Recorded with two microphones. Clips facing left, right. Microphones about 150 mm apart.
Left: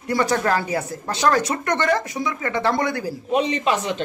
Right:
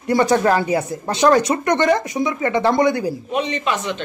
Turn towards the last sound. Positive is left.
turn(degrees=35)  # may be behind; listen again after turning